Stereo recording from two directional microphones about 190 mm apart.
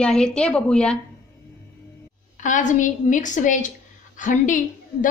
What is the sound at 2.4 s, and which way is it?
A woman's voice, 40° left (ahead or behind).